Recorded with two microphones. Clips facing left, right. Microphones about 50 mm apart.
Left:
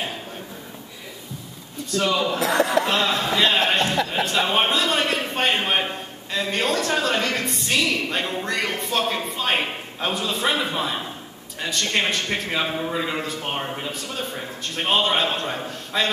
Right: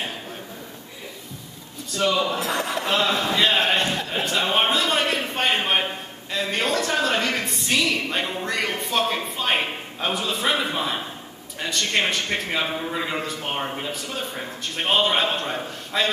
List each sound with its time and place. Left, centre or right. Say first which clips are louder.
2.0 s a woman's voice: even; centre
2.4 s speech: left 6 dB; left
2.8 s a woman's voice: even; centre
4.7 s a sound: even; centre
6.3 s a woman's voice: left 1 dB; centre